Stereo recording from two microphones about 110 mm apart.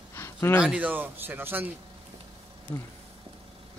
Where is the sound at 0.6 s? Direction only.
10° right (ahead or behind).